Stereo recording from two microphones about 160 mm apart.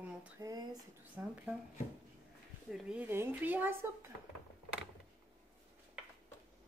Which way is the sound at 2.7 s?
10° right (ahead or behind).